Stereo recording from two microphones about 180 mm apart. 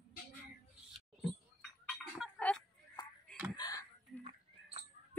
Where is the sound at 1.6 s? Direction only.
Centre (ahead or behind).